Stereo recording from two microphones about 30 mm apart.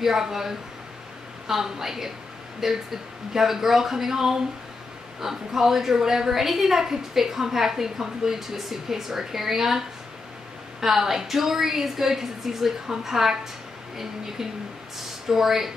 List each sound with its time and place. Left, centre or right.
0.0 s a woman's voice: centre